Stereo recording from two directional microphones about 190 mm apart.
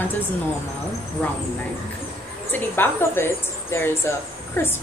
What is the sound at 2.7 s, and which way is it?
A woman's voice, 10° left (ahead or behind).